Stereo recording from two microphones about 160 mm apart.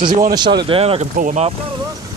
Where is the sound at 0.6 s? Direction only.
35° right (ahead or behind).